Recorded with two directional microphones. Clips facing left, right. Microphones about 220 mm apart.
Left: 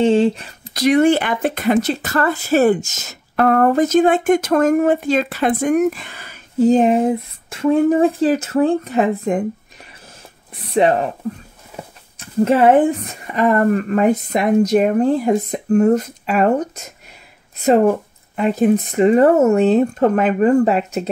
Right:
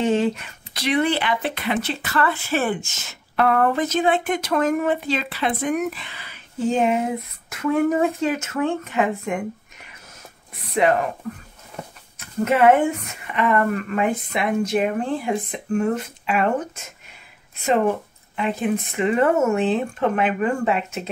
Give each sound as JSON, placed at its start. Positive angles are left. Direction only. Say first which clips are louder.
{"t": 0.0, "sound": "speech", "louder": "left 6 dB", "side_deg": 30}
{"t": 10.5, "sound": "speech", "louder": "left 4 dB", "side_deg": 30}
{"t": 12.2, "sound": "speech", "louder": "left 4 dB", "side_deg": 35}